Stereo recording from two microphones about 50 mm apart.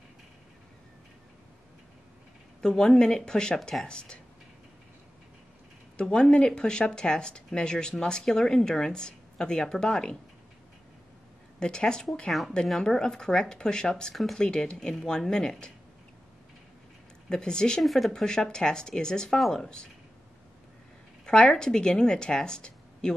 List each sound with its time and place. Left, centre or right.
2.6 s speech: centre
5.9 s speech: centre
11.6 s speech: centre
14.1 s speech: centre
14.4 s speech: centre
17.3 s speech: centre
17.8 s speech: centre
19.3 s speech: centre
19.6 s speech: centre
21.3 s speech: centre